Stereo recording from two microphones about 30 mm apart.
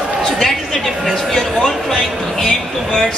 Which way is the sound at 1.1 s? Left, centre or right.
Centre.